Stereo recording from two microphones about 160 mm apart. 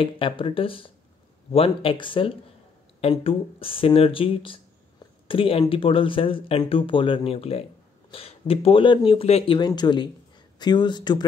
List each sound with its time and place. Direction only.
0.0 s speech: 35° left (ahead or behind)